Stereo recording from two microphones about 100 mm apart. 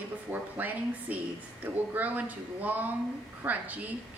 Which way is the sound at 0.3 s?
15° right (ahead or behind).